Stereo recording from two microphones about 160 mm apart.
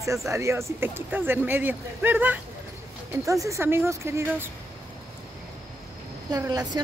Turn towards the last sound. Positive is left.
turn(degrees=-25)  # may be behind; listen again after turning